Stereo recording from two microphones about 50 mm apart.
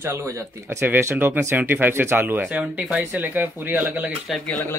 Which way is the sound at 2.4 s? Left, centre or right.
Right.